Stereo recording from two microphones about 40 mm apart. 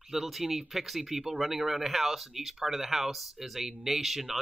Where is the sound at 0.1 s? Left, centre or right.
Centre.